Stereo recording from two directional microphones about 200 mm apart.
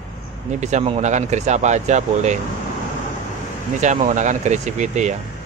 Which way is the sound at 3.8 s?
35° right (ahead or behind).